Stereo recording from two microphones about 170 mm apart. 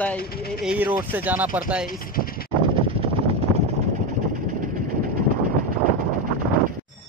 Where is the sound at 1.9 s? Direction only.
60° left (ahead or behind).